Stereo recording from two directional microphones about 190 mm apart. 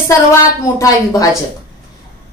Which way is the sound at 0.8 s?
20° left (ahead or behind).